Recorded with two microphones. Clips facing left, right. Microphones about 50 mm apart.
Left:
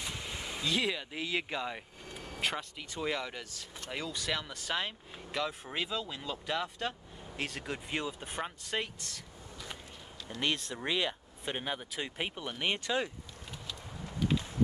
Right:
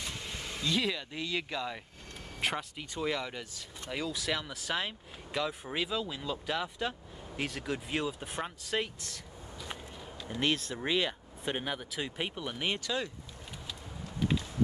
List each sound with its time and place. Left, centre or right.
0.0 s speech: centre
2.4 s speech: centre
12.7 s speech: left